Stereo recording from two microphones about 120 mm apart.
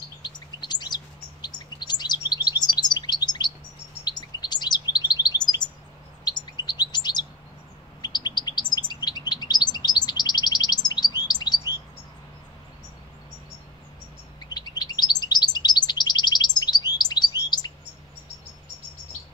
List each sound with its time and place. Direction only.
0.2 s chirp: 35° left (ahead or behind)
14.5 s chirp: 35° left (ahead or behind)